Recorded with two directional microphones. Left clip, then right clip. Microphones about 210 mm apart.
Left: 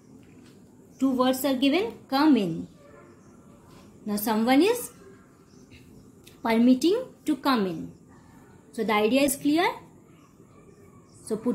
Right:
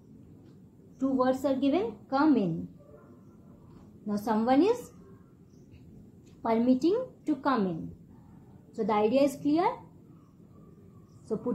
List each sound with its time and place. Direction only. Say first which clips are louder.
0.9 s a woman's voice: left 3 dB; 35° left (ahead or behind)
4.0 s a woman's voice: left 3 dB; 35° left (ahead or behind)
6.4 s a woman's voice: left 4 dB; 35° left (ahead or behind)
8.7 s a woman's voice: left 2 dB; 40° left (ahead or behind)